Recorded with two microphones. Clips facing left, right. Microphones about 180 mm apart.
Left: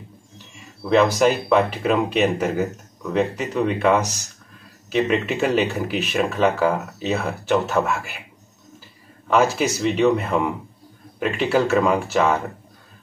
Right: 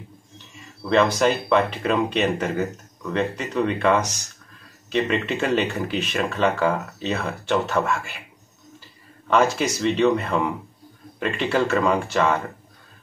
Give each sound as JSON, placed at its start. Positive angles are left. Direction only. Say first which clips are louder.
{"t": 0.8, "sound": "speech", "louder": "left 2 dB", "side_deg": 10}
{"t": 9.3, "sound": "speech", "louder": "left 1 dB", "side_deg": 5}